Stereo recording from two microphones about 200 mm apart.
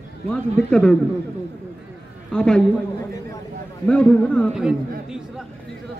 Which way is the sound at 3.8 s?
5° left (ahead or behind).